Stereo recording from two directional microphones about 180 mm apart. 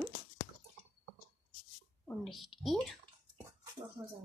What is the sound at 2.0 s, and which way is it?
Speech, centre (ahead or behind).